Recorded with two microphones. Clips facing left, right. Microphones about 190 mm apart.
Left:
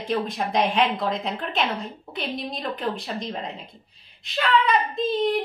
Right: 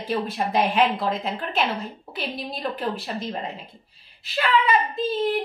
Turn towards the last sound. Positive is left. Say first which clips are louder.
# left 1 dB
turn(degrees=-5)  # may be behind; listen again after turning